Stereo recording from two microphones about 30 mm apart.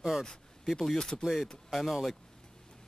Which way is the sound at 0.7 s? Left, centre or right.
Left.